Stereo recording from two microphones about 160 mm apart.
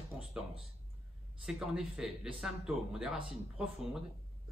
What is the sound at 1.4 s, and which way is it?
A man's voice, 5° right (ahead or behind).